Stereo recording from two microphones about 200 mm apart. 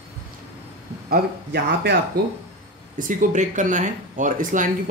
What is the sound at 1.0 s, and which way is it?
Speech, 50° right (ahead or behind).